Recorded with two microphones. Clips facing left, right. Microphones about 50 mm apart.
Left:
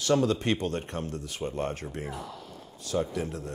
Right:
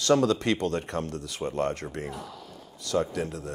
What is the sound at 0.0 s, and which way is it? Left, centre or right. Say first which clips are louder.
Speech: right 2 dB; right.